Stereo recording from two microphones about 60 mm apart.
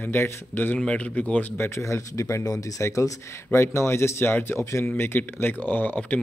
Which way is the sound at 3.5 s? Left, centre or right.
Left.